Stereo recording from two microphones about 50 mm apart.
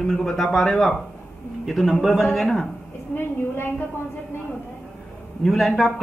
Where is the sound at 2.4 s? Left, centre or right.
Centre.